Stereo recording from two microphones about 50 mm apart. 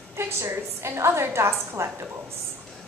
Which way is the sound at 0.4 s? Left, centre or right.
Right.